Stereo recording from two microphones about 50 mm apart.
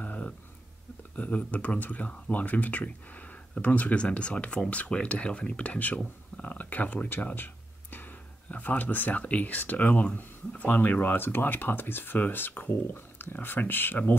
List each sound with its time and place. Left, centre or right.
0.0 s a sound: left
1.1 s speech: left
7.3 s speech: left